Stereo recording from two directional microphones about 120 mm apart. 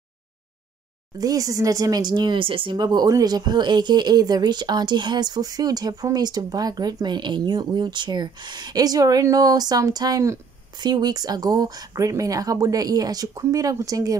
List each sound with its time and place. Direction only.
1.1 s speech: 30° right (ahead or behind)